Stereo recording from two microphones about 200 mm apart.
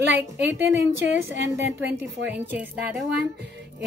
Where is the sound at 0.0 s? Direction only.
60° right (ahead or behind).